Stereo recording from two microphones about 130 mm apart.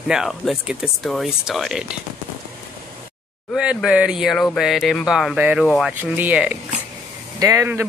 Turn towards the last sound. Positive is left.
turn(degrees=-25)  # may be behind; listen again after turning